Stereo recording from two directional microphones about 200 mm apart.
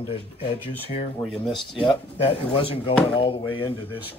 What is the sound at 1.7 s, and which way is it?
Speech, 25° left (ahead or behind).